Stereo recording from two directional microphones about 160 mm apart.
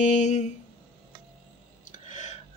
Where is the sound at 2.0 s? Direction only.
45° left (ahead or behind).